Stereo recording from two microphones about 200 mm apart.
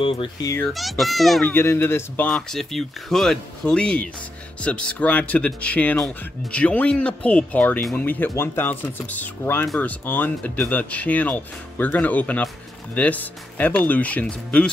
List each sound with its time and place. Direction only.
0.0 s speech: 25° left (ahead or behind)
0.7 s speech: centre (ahead or behind)
1.5 s speech: 10° left (ahead or behind)